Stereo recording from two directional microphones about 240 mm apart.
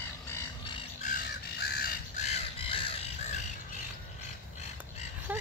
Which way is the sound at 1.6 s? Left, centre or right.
Left.